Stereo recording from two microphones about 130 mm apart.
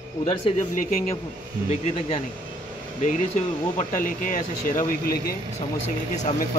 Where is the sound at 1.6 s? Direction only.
50° left (ahead or behind).